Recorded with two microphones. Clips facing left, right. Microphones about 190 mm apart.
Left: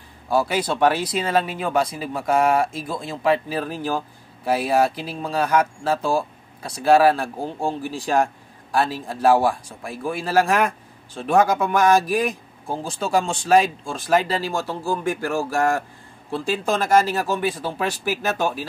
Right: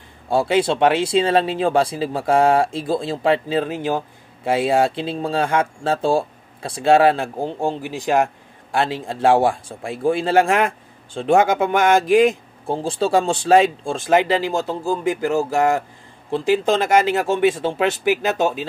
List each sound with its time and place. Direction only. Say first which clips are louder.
0.3 s speech: right 4 dB; 25° right (ahead or behind)